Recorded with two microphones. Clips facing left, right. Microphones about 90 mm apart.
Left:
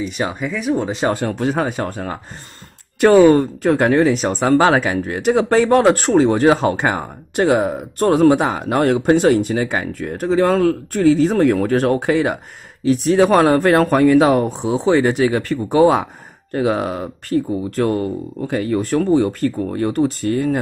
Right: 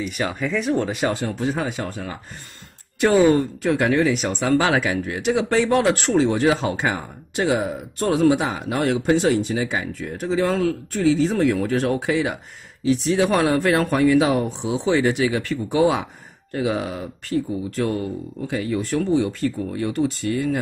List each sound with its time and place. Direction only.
0.0 s speech: 25° left (ahead or behind)
0.5 s speech: 5° left (ahead or behind)
0.8 s speech: 25° left (ahead or behind)
1.2 s speech: 65° left (ahead or behind)
1.7 s speech: 45° left (ahead or behind)